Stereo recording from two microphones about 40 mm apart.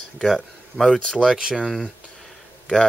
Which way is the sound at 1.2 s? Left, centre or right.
Centre.